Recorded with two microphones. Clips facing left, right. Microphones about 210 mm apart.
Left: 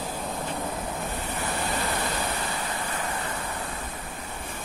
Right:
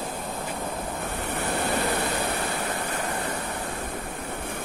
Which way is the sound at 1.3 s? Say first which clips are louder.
Right 5 dB; 60° right (ahead or behind).